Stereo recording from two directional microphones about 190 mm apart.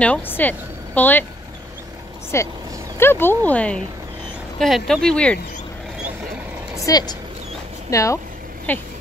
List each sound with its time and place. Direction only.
0.0 s speech: 10° left (ahead or behind)
2.3 s speech: 15° left (ahead or behind)
6.8 s speech: 20° left (ahead or behind)